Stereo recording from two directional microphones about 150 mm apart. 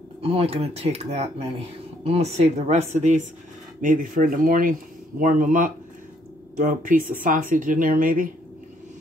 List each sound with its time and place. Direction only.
0.2 s speech: 40° right (ahead or behind)
3.8 s speech: 65° right (ahead or behind)